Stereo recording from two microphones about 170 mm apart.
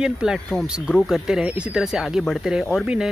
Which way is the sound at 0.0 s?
5° right (ahead or behind).